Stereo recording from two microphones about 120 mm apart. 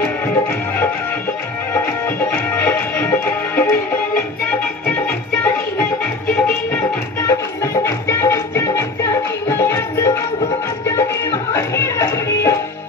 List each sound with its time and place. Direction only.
1.7 s music: 20° left (ahead or behind)